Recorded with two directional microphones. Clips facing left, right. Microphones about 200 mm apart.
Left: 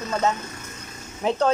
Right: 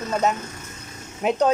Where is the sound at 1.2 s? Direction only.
15° right (ahead or behind).